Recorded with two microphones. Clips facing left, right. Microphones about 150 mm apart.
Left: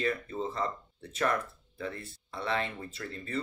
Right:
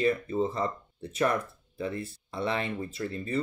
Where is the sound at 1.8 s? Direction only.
15° right (ahead or behind).